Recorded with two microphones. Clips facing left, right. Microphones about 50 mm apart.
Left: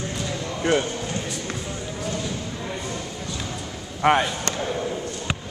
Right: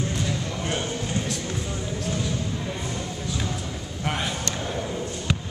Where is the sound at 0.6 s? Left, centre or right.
Left.